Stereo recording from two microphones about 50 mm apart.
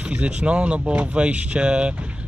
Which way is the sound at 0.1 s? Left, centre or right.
Right.